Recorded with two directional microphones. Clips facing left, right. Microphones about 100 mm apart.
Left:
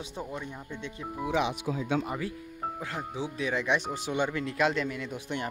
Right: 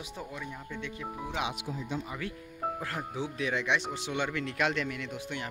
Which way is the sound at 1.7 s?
90° left.